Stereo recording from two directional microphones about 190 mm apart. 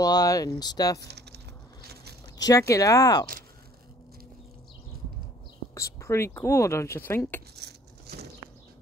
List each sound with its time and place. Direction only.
0.0 s speech: 20° left (ahead or behind)
1.0 s a sound: 60° right (ahead or behind)
2.3 s speech: 20° left (ahead or behind)
5.8 s speech: 15° left (ahead or behind)